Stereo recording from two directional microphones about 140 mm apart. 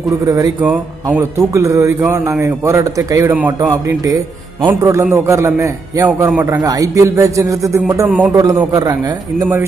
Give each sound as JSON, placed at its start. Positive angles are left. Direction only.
{"t": 0.2, "sound": "a man's voice", "side_deg": -25}
{"t": 0.6, "sound": "speech", "side_deg": -10}
{"t": 1.4, "sound": "a man's voice", "side_deg": -20}